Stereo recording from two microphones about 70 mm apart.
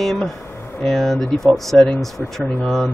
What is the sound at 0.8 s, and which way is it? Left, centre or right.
A man's voice, centre.